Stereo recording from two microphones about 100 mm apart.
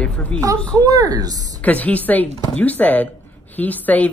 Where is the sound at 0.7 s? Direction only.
35° right (ahead or behind).